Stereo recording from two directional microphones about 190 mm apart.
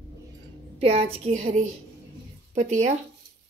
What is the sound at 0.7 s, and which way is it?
A woman's voice, 30° right (ahead or behind).